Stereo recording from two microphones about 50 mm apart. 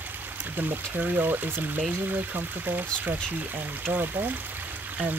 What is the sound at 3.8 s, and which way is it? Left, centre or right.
Speech, right.